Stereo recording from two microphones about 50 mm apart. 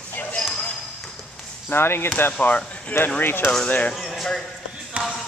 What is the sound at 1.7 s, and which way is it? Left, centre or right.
Speech, left.